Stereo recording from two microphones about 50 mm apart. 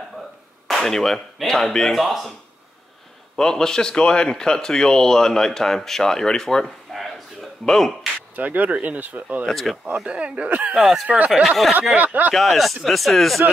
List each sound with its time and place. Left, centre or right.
0.7 s speech: centre
3.3 s speech: centre
6.6 s a sound: centre
7.6 s speech: centre
8.4 s speech: right
9.5 s speech: centre
9.9 s speech: right
11.4 s speech: centre
12.0 s speech: right
12.4 s speech: centre